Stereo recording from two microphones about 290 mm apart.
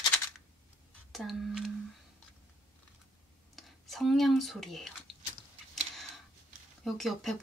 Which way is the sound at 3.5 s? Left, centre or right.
Centre.